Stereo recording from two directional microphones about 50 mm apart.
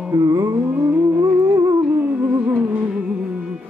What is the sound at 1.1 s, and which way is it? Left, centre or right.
Music, right.